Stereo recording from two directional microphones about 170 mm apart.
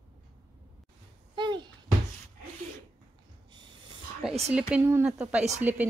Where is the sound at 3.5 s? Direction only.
25° right (ahead or behind).